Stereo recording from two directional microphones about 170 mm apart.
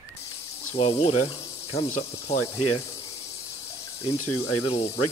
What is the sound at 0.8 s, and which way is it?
Speech, 35° left (ahead or behind).